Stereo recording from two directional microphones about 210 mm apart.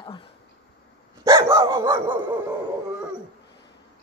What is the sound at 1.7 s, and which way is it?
Speech, 15° right (ahead or behind).